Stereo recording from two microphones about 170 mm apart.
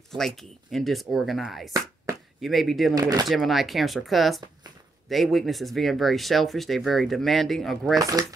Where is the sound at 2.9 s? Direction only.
25° right (ahead or behind).